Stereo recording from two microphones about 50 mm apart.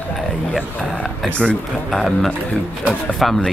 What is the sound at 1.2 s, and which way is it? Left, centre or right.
Speech, left.